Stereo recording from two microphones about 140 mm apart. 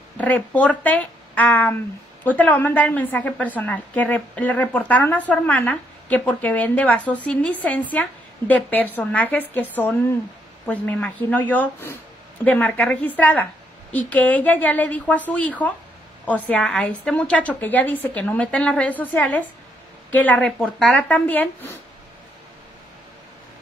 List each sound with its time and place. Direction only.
0.2 s a woman's voice: 10° left (ahead or behind)